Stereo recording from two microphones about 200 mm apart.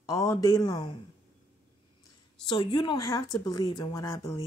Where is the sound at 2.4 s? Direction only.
20° left (ahead or behind).